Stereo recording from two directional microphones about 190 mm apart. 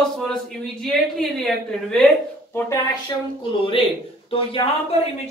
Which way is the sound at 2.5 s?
15° left (ahead or behind).